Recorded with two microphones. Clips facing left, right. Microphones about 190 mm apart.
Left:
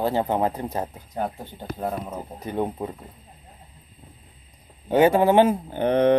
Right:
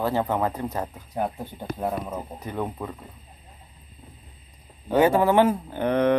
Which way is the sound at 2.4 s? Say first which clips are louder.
Left 6 dB; 25° left (ahead or behind).